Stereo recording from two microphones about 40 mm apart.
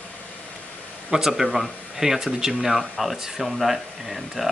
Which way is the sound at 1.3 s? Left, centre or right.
Centre.